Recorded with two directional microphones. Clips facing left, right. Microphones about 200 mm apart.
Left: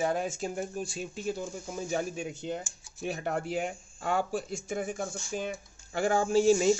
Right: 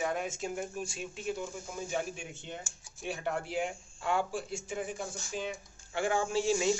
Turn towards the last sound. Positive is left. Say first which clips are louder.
# left 6 dB
turn(degrees=45)  # may be behind; listen again after turning